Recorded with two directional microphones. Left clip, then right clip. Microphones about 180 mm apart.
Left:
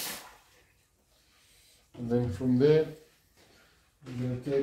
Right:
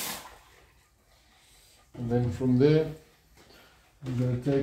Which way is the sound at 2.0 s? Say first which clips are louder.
Right 1 dB; 25° left (ahead or behind).